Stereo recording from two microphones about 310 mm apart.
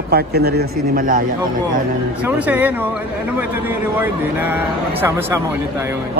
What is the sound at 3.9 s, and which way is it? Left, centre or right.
Speech, centre.